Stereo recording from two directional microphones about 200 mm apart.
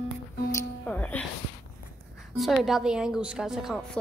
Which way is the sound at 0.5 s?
10° left (ahead or behind).